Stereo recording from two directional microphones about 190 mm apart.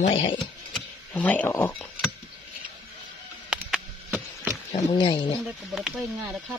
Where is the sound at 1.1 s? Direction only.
10° left (ahead or behind).